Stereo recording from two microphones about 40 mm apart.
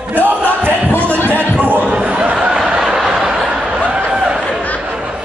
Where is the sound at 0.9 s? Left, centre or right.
Left.